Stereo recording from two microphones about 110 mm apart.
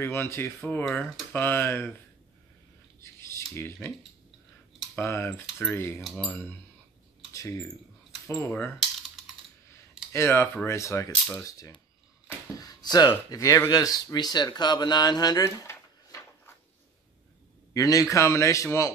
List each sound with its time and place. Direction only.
0.0 s a man's voice: 20° left (ahead or behind)
3.0 s scissors: 25° left (ahead or behind)
4.9 s a man's voice: 25° left (ahead or behind)
7.3 s speech: 30° left (ahead or behind)
8.3 s a man's voice: 20° left (ahead or behind)
10.1 s a man's voice: 25° left (ahead or behind)
12.5 s a sound: 35° left (ahead or behind)
13.3 s speech: 30° left (ahead or behind)
17.7 s a man's voice: 30° left (ahead or behind)